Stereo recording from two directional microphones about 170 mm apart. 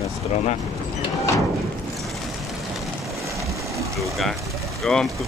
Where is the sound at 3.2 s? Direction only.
20° right (ahead or behind).